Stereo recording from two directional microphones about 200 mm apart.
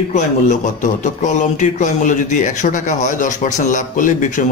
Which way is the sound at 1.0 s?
35° left (ahead or behind).